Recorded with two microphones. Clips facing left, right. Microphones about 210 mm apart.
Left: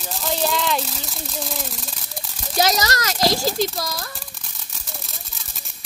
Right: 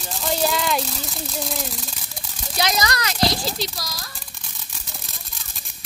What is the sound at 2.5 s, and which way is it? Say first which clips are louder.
A child's voice: left 3 dB; 40° left (ahead or behind).